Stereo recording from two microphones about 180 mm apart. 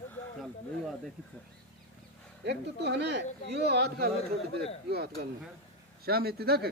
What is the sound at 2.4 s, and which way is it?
Speech, 70° right (ahead or behind).